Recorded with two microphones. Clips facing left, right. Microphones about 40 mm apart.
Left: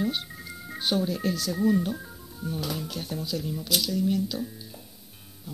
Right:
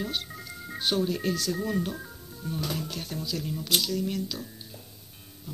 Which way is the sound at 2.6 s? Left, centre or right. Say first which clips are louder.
Even; centre.